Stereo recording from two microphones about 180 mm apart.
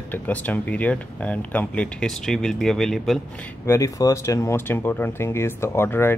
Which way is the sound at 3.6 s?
15° left (ahead or behind).